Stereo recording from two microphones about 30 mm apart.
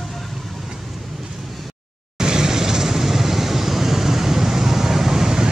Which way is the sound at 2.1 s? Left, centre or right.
Right.